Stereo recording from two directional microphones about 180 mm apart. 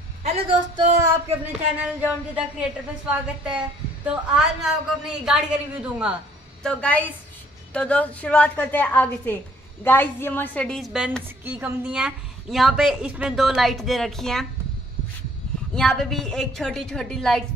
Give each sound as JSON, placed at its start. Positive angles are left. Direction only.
{"t": 0.2, "sound": "a woman's voice", "side_deg": -30}
{"t": 1.4, "sound": "a woman's voice", "side_deg": -10}
{"t": 6.6, "sound": "a woman's voice", "side_deg": 10}
{"t": 15.7, "sound": "speech", "side_deg": 0}